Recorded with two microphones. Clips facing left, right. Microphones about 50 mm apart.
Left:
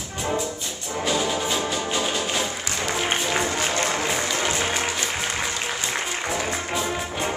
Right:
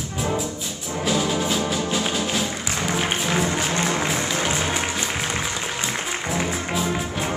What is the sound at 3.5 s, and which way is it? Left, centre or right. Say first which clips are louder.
Music: right 1 dB; centre.